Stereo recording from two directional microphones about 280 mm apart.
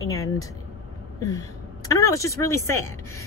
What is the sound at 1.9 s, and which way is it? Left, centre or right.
Speech, centre.